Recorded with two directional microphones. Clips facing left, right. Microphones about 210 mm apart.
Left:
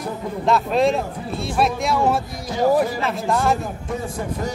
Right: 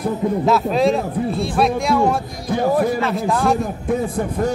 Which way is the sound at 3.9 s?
55° right (ahead or behind).